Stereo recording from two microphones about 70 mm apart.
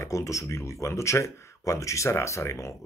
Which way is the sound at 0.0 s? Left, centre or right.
Left.